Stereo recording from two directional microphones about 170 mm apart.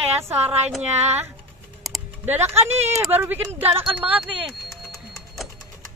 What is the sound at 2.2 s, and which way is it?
A woman's voice, 10° right (ahead or behind).